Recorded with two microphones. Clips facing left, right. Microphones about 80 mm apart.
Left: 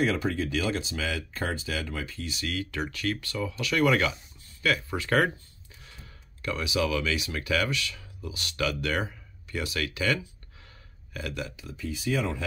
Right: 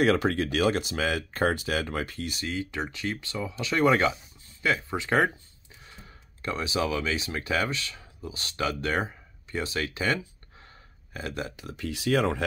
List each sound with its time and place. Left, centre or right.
0.0 s speech: right
2.4 s speech: right
6.4 s speech: right
11.5 s speech: right